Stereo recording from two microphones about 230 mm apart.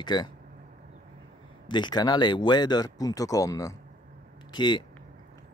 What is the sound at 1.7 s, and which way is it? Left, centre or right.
Speech, centre.